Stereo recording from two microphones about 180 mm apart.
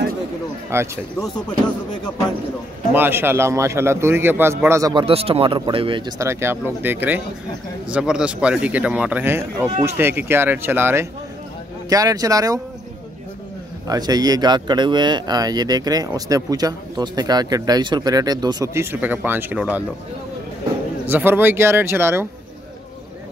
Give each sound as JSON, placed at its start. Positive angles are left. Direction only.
{"t": 0.7, "sound": "speech", "side_deg": -15}
{"t": 2.9, "sound": "speech", "side_deg": -10}
{"t": 5.0, "sound": "speech", "side_deg": -30}
{"t": 13.8, "sound": "speech", "side_deg": -20}
{"t": 21.1, "sound": "speech", "side_deg": -10}